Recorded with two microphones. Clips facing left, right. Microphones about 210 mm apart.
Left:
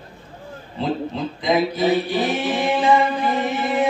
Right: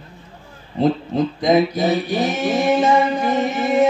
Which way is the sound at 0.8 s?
45° right (ahead or behind).